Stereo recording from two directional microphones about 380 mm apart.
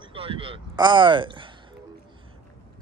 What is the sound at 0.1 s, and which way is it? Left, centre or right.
Speech, centre.